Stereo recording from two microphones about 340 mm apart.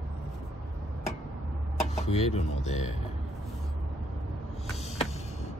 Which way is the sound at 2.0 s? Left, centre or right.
Centre.